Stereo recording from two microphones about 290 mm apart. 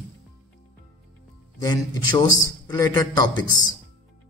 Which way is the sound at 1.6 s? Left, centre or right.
Centre.